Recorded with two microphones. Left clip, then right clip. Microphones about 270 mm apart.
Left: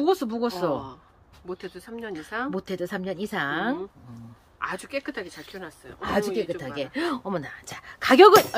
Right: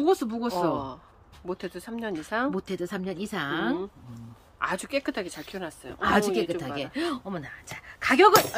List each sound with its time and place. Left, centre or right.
0.0 s speech: centre
1.5 s speech: right
2.5 s speech: centre
4.6 s speech: right
5.9 s a woman's voice: centre; by 8.3 s left